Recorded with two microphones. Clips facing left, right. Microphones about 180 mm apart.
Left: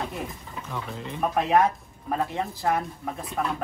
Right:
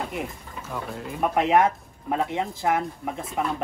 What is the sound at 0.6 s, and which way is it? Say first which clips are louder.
Speech: right 2 dB; 5° right (ahead or behind).